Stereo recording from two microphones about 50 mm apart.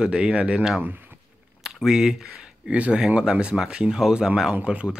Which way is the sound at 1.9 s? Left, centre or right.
Centre.